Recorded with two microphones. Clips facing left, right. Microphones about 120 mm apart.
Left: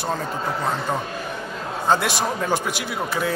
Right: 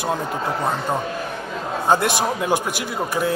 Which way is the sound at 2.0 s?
50° right (ahead or behind).